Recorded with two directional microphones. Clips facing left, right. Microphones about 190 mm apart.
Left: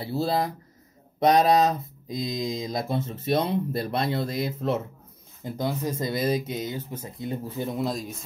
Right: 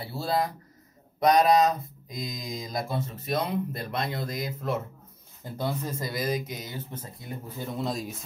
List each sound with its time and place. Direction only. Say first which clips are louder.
0.0 s speech: left 3 dB; 25° left (ahead or behind)
7.8 s a man's voice: even; centre (ahead or behind)